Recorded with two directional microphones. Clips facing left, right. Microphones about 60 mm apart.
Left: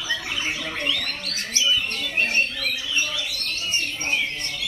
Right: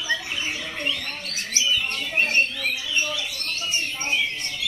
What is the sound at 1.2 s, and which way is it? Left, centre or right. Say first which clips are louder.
Bird: even; right.